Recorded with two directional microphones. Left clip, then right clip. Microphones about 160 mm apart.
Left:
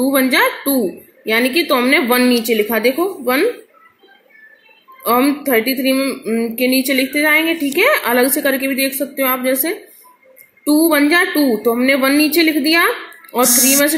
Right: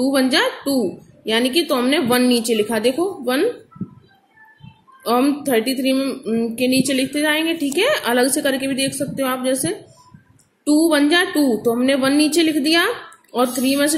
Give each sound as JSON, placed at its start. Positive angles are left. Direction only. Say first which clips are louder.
{"t": 0.1, "sound": "speech", "louder": "left 5 dB", "side_deg": -10}
{"t": 5.0, "sound": "speech", "louder": "left 3 dB", "side_deg": -15}
{"t": 11.0, "sound": "speech", "louder": "left 3 dB", "side_deg": -15}